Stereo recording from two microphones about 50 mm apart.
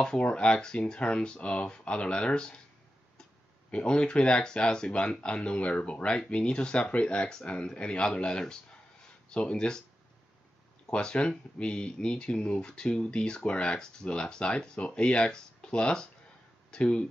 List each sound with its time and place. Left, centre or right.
0.0 s speech: centre
3.7 s speech: centre
10.9 s speech: left